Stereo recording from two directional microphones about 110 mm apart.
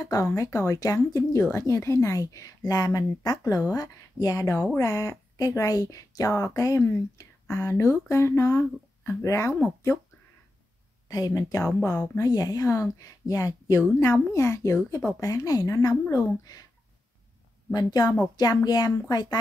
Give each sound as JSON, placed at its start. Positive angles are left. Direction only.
{"t": 0.0, "sound": "a woman's voice", "side_deg": 30}
{"t": 11.1, "sound": "a woman's voice", "side_deg": 35}
{"t": 17.7, "sound": "a woman's voice", "side_deg": 40}